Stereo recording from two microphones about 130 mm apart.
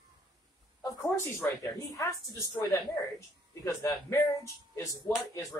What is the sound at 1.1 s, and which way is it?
A woman's voice, 20° left (ahead or behind).